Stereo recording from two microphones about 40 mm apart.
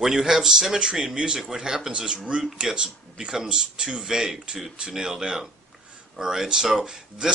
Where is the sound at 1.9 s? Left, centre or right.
Right.